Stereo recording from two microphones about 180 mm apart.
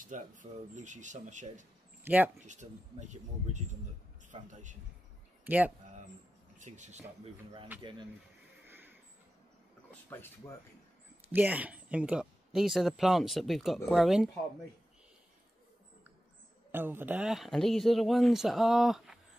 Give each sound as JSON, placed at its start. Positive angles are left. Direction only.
{"t": 0.0, "sound": "speech", "side_deg": -45}
{"t": 2.0, "sound": "speech", "side_deg": -10}
{"t": 2.4, "sound": "speech", "side_deg": -40}
{"t": 6.6, "sound": "speech", "side_deg": -40}
{"t": 7.7, "sound": "speech", "side_deg": -10}
{"t": 8.6, "sound": "a sound", "side_deg": -10}
{"t": 9.8, "sound": "speech", "side_deg": 10}
{"t": 11.3, "sound": "speech", "side_deg": -10}
{"t": 16.7, "sound": "speech", "side_deg": -10}